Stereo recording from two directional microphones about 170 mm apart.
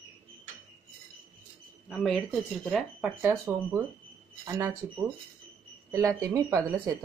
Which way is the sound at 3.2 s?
15° right (ahead or behind).